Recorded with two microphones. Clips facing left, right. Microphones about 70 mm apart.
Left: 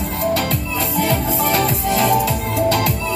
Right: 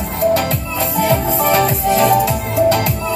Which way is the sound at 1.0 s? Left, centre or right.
Right.